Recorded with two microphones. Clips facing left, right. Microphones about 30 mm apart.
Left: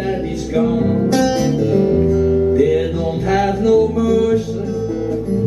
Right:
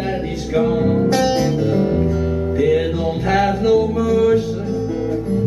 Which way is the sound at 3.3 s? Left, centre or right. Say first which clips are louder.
Left 1 dB; centre.